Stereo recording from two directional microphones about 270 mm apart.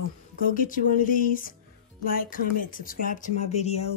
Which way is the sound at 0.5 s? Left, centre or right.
Left.